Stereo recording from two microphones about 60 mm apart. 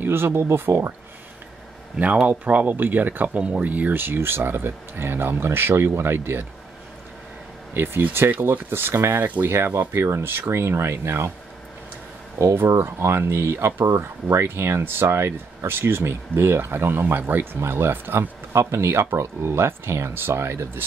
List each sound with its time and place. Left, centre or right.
0.0 s speech: right
2.2 s speech: right
7.7 s speech: right
12.4 s speech: right
18.5 s speech: right